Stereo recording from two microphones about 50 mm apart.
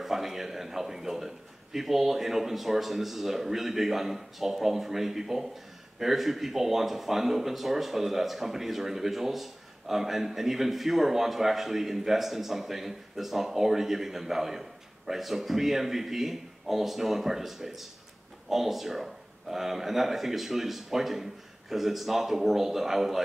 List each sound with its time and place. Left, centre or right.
0.0 s speech: centre